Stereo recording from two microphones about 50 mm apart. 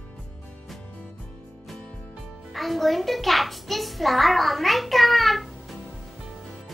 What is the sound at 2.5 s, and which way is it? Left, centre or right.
A child's voice, centre.